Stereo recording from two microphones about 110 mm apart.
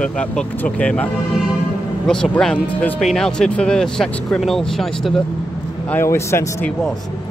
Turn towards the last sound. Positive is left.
turn(degrees=25)  # may be behind; listen again after turning